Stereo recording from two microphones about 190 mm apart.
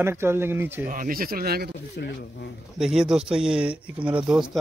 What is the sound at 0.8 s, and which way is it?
Speech, 45° right (ahead or behind).